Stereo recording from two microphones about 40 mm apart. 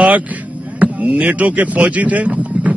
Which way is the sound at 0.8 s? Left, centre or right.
Right.